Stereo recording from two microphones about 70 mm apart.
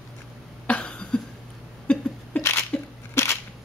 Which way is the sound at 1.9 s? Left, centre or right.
Centre.